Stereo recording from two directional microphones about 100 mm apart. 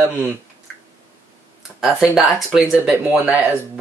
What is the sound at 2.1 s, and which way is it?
Speech, 5° right (ahead or behind).